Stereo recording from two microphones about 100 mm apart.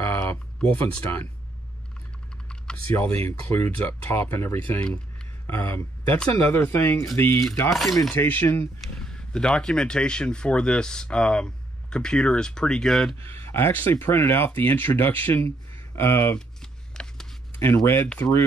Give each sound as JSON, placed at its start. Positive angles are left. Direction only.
{"t": 0.0, "sound": "a sound", "side_deg": 25}
{"t": 0.6, "sound": "speech", "side_deg": 15}
{"t": 2.4, "sound": "typing", "side_deg": 10}
{"t": 3.3, "sound": "speech", "side_deg": 15}
{"t": 4.7, "sound": "speech", "side_deg": 10}
{"t": 5.5, "sound": "speech", "side_deg": 20}
{"t": 7.7, "sound": "cutlery", "side_deg": 0}
{"t": 8.1, "sound": "speech", "side_deg": 20}
{"t": 8.8, "sound": "speech", "side_deg": 5}
{"t": 13.2, "sound": "speech", "side_deg": 25}
{"t": 16.9, "sound": "a sound", "side_deg": 5}
{"t": 17.7, "sound": "speech", "side_deg": 25}
{"t": 18.0, "sound": "speech", "side_deg": 15}